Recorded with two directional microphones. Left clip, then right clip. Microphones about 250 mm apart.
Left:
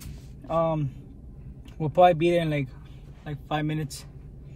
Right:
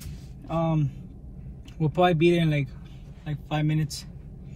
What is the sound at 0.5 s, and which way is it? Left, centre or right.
Speech, left.